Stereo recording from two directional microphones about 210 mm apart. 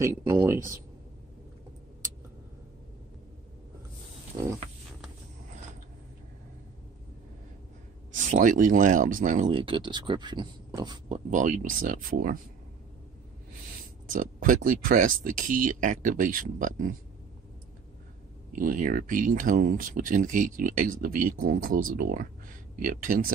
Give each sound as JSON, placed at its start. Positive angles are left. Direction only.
{"t": 0.0, "sound": "speech", "side_deg": -10}
{"t": 8.3, "sound": "speech", "side_deg": -40}
{"t": 9.5, "sound": "speech", "side_deg": -25}
{"t": 14.1, "sound": "speech", "side_deg": -40}
{"t": 18.5, "sound": "speech", "side_deg": -40}